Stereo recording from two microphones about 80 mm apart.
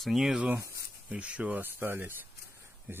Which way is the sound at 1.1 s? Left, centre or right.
Centre.